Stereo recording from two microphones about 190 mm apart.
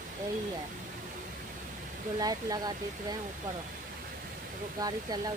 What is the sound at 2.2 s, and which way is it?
Speech, 20° right (ahead or behind).